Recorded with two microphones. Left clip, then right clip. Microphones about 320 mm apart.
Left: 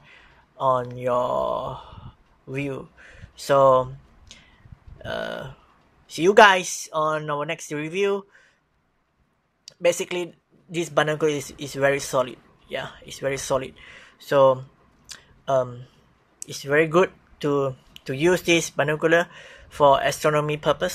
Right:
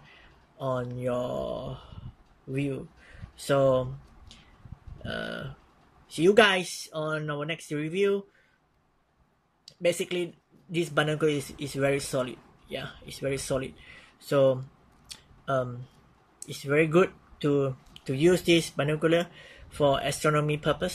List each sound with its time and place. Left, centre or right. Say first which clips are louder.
0.7 s speech: left 8 dB; centre
1.2 s speech: left 8 dB; left
2.5 s speech: left 3 dB; centre
5.0 s speech: left 5 dB; centre
9.7 s speech: left 5 dB; centre
15.0 s a sound: left 6 dB; centre
16.3 s speech: left 5 dB; centre